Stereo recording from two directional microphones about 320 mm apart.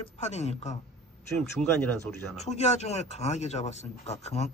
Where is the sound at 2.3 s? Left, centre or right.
Left.